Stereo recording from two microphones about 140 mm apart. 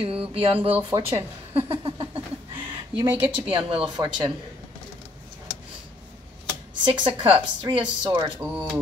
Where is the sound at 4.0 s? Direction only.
25° right (ahead or behind).